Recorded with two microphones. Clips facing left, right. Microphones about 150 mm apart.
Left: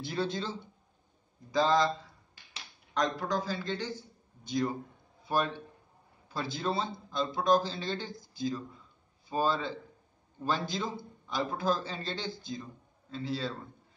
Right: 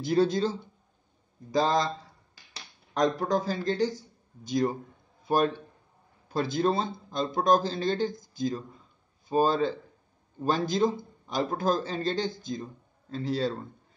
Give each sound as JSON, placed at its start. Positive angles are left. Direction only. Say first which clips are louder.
{"t": 0.0, "sound": "a man's voice", "louder": "right 9 dB", "side_deg": -40}
{"t": 6.2, "sound": "a man's voice", "louder": "right 8 dB", "side_deg": -45}